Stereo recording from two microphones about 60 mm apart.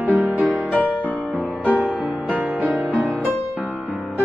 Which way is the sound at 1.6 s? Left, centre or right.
Right.